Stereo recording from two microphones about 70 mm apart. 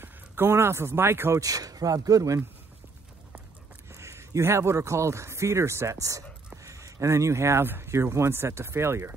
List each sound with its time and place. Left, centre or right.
0.0 s speech: right
1.3 s speech: right
3.9 s speech: right